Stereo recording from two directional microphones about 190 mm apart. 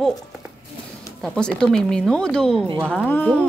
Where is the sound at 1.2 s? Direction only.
5° left (ahead or behind).